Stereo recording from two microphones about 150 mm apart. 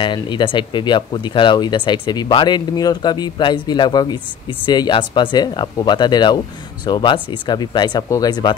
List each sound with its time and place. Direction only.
0.0 s speech: 30° left (ahead or behind)